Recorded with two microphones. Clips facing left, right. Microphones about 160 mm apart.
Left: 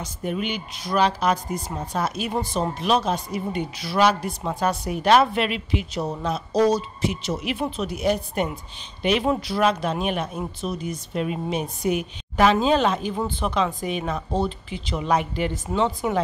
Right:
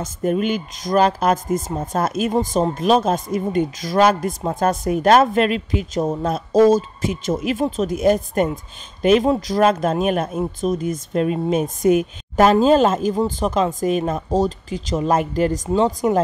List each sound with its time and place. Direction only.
0.0 s a woman's voice: 45° right (ahead or behind)